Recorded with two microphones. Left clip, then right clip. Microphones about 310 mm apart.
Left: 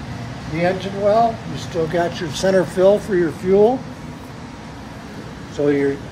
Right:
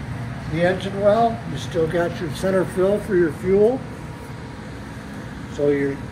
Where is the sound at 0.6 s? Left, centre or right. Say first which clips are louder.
Left 1 dB; centre.